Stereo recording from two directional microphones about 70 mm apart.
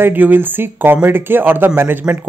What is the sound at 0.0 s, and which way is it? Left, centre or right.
Speech, right.